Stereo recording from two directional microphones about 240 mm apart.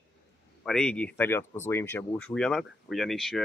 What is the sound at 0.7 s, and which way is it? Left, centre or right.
Speech, centre.